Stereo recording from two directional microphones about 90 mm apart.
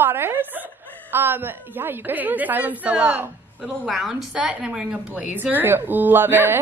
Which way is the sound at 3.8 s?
Centre (ahead or behind).